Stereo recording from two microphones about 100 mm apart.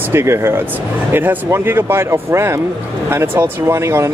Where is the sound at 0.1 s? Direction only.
25° right (ahead or behind).